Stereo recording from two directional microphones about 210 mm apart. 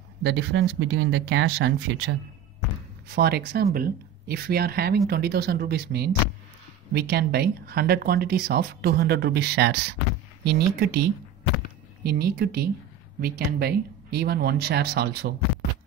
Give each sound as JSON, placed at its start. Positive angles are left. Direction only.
{"t": 0.2, "sound": "speech", "side_deg": -55}
{"t": 3.2, "sound": "speech", "side_deg": -50}